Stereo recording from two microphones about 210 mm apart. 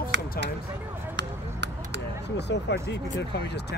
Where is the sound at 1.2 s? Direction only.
55° right (ahead or behind).